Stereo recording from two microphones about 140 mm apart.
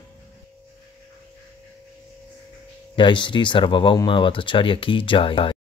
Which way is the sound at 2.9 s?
35° left (ahead or behind).